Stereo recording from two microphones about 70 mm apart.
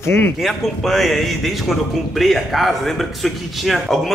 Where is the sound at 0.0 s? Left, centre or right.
Left.